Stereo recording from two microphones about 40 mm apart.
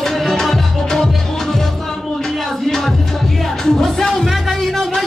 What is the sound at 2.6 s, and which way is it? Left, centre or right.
Music, centre.